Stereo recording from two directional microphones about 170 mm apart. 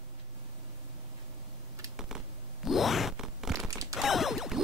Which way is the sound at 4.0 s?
Centre (ahead or behind).